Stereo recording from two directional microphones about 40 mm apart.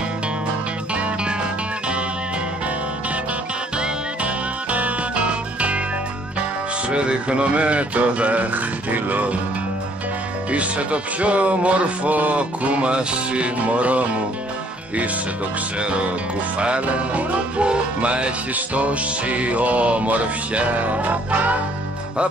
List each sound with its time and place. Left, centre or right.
3.7 s music: right
4.6 s music: right
6.9 s music: right
10.5 s music: right
15.8 s music: right